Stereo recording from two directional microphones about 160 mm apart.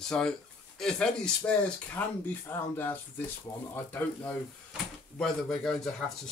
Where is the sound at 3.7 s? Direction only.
10° left (ahead or behind).